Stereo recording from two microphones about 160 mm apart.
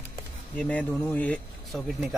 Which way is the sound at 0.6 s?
10° left (ahead or behind).